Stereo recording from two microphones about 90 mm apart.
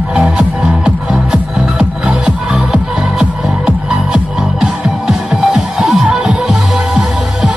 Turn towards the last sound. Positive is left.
turn(degrees=-5)  # may be behind; listen again after turning